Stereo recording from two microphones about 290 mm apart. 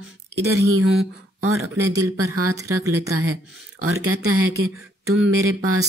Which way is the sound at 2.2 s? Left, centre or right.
Right.